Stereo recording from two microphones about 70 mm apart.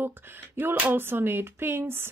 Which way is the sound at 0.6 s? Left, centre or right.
Right.